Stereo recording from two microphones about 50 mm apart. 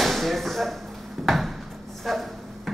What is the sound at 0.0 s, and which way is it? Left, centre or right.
Chop, centre.